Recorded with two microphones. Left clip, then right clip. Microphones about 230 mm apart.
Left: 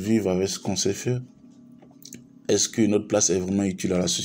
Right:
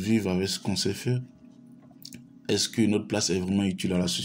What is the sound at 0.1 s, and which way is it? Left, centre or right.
Speech, left.